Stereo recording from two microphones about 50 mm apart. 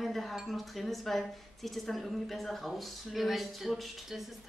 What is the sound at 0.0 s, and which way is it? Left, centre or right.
Chink, centre.